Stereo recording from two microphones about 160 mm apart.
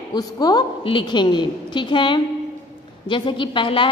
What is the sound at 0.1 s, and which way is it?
A woman's voice, 25° left (ahead or behind).